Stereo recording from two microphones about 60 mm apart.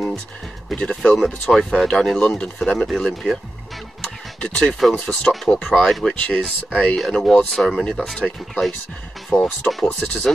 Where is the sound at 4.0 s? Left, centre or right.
Centre.